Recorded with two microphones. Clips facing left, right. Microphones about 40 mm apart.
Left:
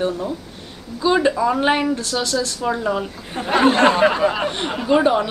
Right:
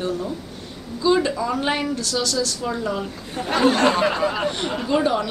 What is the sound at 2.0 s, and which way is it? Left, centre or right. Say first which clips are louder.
Speech: left 1 dB; left.